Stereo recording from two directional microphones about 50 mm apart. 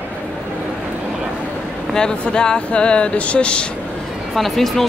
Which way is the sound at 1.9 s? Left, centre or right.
Centre.